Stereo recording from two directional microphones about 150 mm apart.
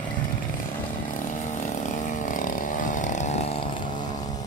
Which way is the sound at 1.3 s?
55° left (ahead or behind).